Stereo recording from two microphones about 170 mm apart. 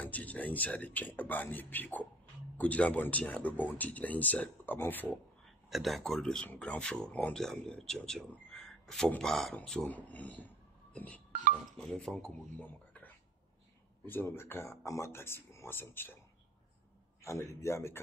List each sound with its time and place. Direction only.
0.0 s speech: 10° left (ahead or behind)
5.7 s speech: centre (ahead or behind)
17.2 s speech: 15° left (ahead or behind)